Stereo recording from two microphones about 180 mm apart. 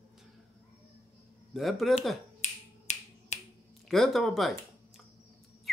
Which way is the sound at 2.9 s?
40° left (ahead or behind).